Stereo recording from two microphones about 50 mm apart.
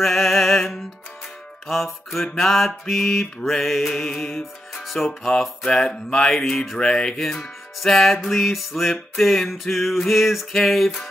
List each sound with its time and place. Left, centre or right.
0.0 s music: centre
2.3 s mantra: centre
4.7 s music: centre
5.7 s speech: centre
6.3 s mantra: centre
6.8 s speech: centre
7.8 s mantra: centre
10.5 s speech: centre